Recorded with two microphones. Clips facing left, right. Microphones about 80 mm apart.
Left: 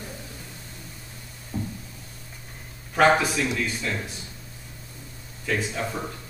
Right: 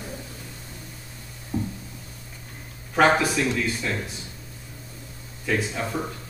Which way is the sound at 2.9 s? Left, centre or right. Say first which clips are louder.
Even; centre.